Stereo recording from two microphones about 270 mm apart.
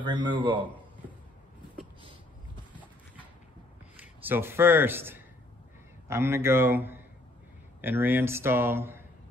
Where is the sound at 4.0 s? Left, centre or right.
Centre.